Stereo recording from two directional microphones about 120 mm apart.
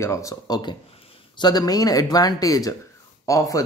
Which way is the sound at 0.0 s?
25° left (ahead or behind).